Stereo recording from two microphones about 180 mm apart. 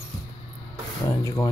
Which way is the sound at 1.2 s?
20° left (ahead or behind).